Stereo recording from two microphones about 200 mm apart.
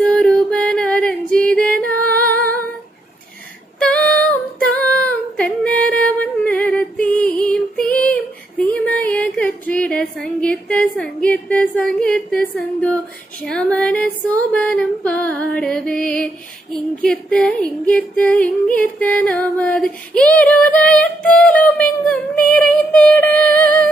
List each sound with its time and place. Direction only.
0.0 s female singing: 5° left (ahead or behind)
3.8 s female singing: 5° left (ahead or behind)
7.9 s a sound: 5° left (ahead or behind)
9.0 s female singing: 5° left (ahead or behind)
16.7 s music: 5° left (ahead or behind)
18.8 s female singing: 5° left (ahead or behind)
23.3 s music: 45° right (ahead or behind)